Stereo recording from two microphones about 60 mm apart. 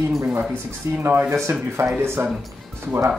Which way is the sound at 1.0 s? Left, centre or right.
Right.